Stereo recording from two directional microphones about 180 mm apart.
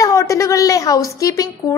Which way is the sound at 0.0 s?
20° left (ahead or behind).